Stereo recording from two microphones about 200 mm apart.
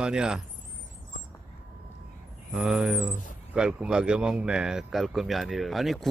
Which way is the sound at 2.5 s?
Centre (ahead or behind).